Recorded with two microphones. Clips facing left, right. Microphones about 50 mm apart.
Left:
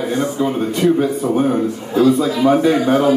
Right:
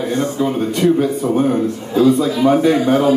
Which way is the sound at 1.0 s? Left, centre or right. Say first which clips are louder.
Even; centre.